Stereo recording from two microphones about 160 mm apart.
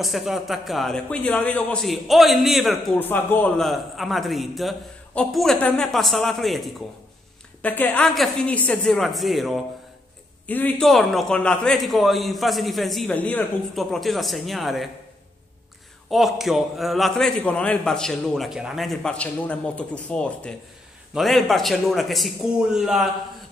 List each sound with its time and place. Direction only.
0.0 s a man's voice: centre (ahead or behind)
3.0 s a man's voice: 10° left (ahead or behind)
10.4 s a man's voice: 10° left (ahead or behind)
16.1 s a man's voice: centre (ahead or behind)